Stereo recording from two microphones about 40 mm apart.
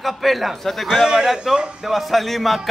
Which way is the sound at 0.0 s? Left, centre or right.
Centre.